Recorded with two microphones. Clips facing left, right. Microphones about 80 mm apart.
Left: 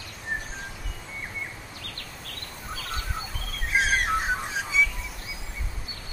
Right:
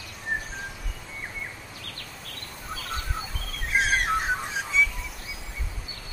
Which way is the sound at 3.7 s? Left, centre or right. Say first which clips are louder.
Even; centre.